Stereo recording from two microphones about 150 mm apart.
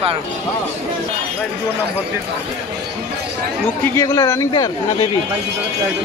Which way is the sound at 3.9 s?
25° left (ahead or behind).